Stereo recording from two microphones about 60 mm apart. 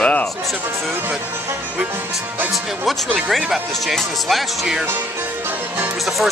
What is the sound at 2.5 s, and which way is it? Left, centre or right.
Speech, centre.